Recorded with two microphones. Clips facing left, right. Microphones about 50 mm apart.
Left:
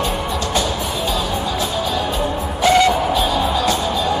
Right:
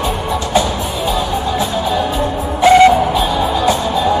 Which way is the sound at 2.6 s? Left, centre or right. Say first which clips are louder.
Right 6 dB; right.